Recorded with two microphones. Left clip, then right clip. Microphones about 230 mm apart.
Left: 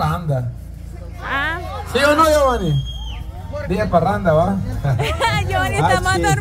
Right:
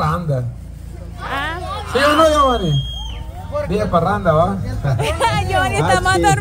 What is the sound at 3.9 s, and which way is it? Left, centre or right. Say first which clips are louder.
Speech: even; left.